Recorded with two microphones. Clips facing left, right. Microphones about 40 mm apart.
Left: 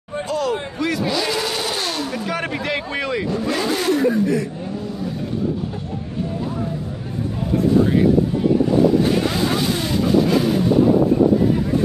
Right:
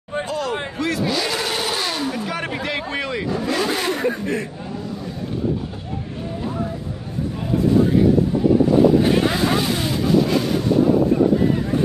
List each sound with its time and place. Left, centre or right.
0.3 s vehicle: centre
2.1 s a sound: centre
3.9 s speech: right
9.7 s vehicle: centre